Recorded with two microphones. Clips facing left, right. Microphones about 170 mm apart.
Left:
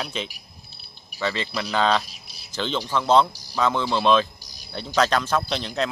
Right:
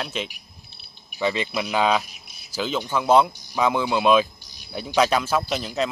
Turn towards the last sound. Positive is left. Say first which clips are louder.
# right 1 dB
turn(degrees=-5)  # may be behind; listen again after turning